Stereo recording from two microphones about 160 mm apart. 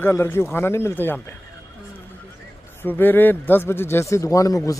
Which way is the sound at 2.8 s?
10° left (ahead or behind).